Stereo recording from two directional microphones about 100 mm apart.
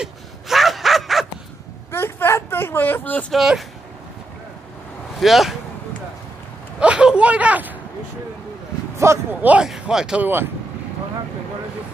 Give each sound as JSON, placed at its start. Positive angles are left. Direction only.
{"t": 0.0, "sound": "gasp", "side_deg": 0}
{"t": 1.9, "sound": "a sound", "side_deg": 25}
{"t": 3.3, "sound": "speech", "side_deg": 0}
{"t": 5.2, "sound": "speech", "side_deg": 0}
{"t": 6.8, "sound": "speech", "side_deg": -10}
{"t": 8.9, "sound": "speech", "side_deg": -30}
{"t": 9.4, "sound": "speech", "side_deg": -15}
{"t": 10.2, "sound": "speech", "side_deg": -20}